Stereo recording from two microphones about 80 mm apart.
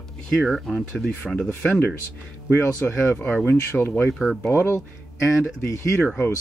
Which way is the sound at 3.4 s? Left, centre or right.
Left.